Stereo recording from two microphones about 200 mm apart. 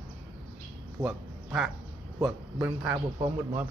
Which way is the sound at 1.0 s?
5° right (ahead or behind).